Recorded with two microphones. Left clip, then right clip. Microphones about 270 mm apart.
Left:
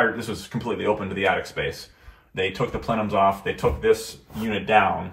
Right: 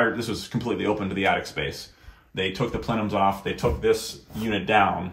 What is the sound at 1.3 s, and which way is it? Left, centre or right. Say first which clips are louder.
Speech: left 1 dB; centre.